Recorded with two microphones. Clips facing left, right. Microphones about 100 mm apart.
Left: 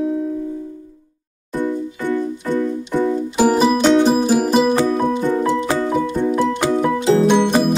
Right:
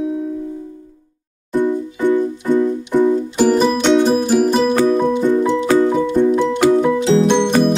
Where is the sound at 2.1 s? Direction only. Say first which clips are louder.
Right 4 dB; 15° right (ahead or behind).